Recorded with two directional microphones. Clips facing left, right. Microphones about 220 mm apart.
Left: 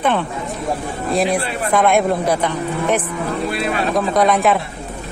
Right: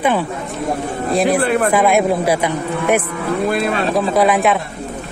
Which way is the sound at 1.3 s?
50° right (ahead or behind).